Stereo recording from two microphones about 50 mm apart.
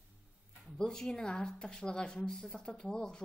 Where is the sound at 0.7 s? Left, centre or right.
Centre.